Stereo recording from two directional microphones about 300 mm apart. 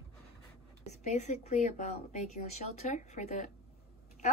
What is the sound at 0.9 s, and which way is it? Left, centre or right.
A woman's voice, left.